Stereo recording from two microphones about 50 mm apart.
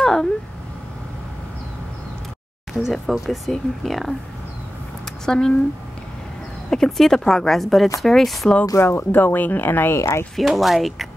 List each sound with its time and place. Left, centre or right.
0.0 s a sound: centre
2.8 s speech: centre
5.2 s speech: centre
6.7 s speech: centre
8.7 s speech: left
9.1 s speech: left
9.9 s speech: left
10.3 s speech: centre